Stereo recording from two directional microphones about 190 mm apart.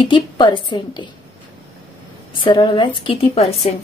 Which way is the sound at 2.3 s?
25° left (ahead or behind).